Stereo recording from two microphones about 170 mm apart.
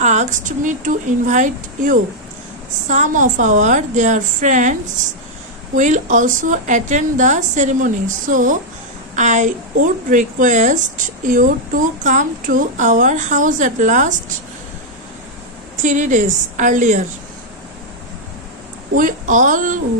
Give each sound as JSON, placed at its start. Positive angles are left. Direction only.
{"t": 0.0, "sound": "a woman's voice", "side_deg": -45}
{"t": 5.8, "sound": "a woman's voice", "side_deg": -45}
{"t": 15.8, "sound": "a woman's voice", "side_deg": -45}
{"t": 18.9, "sound": "a woman's voice", "side_deg": -50}